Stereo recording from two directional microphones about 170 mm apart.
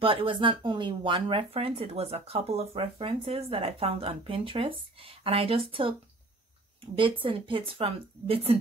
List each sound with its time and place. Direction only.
0.0 s speech: 30° right (ahead or behind)
7.0 s speech: 30° right (ahead or behind)